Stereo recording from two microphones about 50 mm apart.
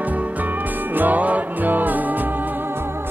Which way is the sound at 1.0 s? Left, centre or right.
Right.